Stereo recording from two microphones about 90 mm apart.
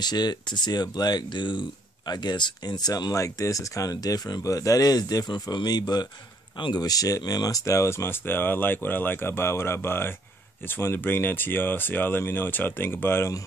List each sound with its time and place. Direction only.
0.0 s speech: 50° left (ahead or behind); by 13.3 s 25° left (ahead or behind)